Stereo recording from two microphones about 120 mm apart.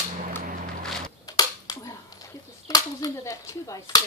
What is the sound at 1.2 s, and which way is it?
Cap gun, 30° left (ahead or behind).